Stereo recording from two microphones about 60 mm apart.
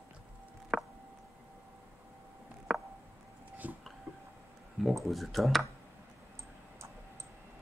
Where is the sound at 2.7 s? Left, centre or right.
Centre.